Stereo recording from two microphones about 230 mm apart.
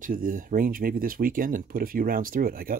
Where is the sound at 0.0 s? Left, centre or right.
Right.